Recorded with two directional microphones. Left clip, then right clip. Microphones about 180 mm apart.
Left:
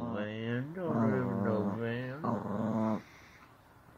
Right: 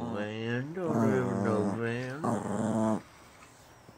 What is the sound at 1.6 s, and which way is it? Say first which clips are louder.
Dog: right 3 dB; 40° right (ahead or behind).